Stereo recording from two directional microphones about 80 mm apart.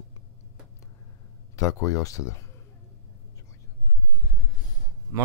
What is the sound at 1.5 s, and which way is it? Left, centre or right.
Speech, left.